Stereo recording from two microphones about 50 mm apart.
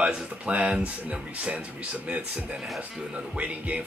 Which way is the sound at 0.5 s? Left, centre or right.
Right.